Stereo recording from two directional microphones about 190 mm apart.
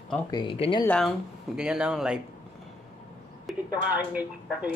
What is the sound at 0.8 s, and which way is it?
Speech, 5° left (ahead or behind).